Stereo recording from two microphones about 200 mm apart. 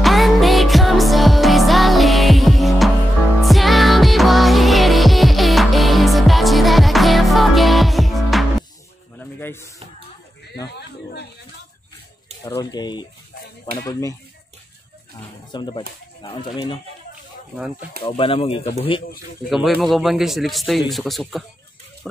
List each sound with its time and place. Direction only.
0.0 s music: centre (ahead or behind)
9.2 s music: 10° left (ahead or behind)
12.4 s speech: 20° left (ahead or behind)
15.5 s speech: 20° left (ahead or behind)
17.6 s a man's voice: 5° right (ahead or behind)
18.0 s speech: 25° left (ahead or behind)
19.8 s a man's voice: centre (ahead or behind)
22.0 s a sound: centre (ahead or behind)